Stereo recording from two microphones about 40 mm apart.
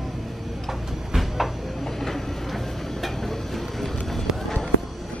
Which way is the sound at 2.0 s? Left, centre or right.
Centre.